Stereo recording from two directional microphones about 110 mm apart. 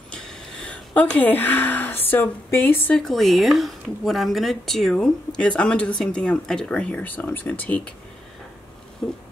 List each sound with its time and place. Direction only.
0.1 s a sound: 5° left (ahead or behind)
3.0 s speech: centre (ahead or behind)
9.0 s speech: 10° left (ahead or behind)